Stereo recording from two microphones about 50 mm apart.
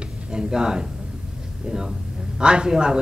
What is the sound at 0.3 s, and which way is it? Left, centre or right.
A man's voice, centre.